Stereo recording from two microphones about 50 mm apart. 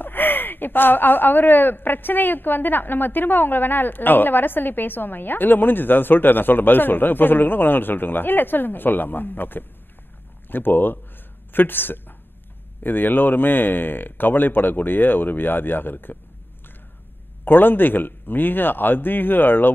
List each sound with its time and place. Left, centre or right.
0.0 s speech: left
17.5 s speech: left